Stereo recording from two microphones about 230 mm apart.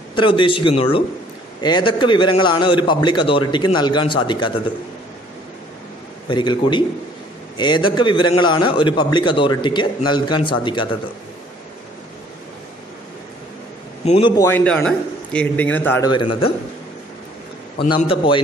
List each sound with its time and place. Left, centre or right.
0.1 s a man's voice: left
6.2 s a man's voice: left
14.0 s a man's voice: left
14.3 s a man's voice: centre
16.1 s a man's voice: left
17.8 s a man's voice: left